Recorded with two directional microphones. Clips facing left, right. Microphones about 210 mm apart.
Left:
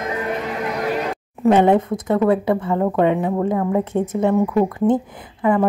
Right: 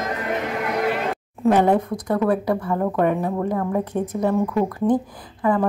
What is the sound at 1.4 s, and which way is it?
Speech, 20° left (ahead or behind).